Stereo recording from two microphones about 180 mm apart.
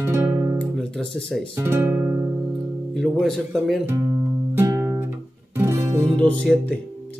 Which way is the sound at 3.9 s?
15° right (ahead or behind).